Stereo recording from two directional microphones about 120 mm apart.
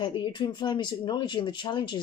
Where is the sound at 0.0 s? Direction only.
40° left (ahead or behind).